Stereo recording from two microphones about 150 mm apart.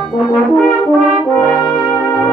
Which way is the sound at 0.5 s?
5° left (ahead or behind).